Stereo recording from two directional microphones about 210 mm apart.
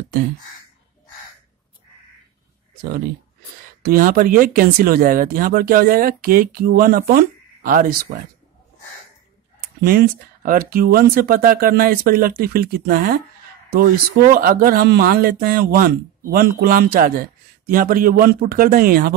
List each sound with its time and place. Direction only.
3.8 s speech: 45° right (ahead or behind)
9.8 s speech: 45° right (ahead or behind)